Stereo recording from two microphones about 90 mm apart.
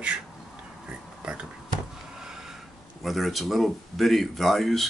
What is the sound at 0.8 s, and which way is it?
Pig, 10° right (ahead or behind).